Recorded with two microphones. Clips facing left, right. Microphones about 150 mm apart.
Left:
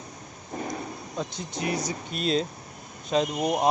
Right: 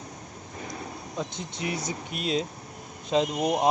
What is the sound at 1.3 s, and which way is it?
Speech, 25° right (ahead or behind).